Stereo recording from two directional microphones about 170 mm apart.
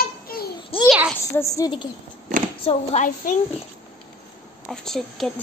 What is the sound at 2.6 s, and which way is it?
Speech, 40° left (ahead or behind).